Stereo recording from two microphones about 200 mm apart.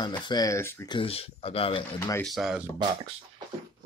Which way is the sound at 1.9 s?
15° left (ahead or behind).